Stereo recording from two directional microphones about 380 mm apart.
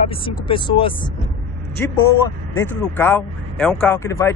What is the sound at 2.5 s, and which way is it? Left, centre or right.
Speech, centre.